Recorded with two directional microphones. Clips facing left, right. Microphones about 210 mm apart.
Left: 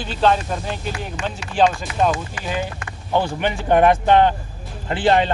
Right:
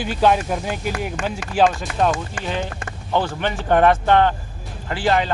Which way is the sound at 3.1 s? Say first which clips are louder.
Left 1 dB; 15° left (ahead or behind).